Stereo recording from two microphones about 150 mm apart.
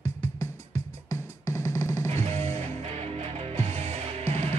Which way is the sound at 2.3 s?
45° right (ahead or behind).